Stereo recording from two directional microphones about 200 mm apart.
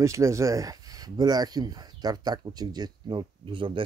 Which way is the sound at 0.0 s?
15° right (ahead or behind).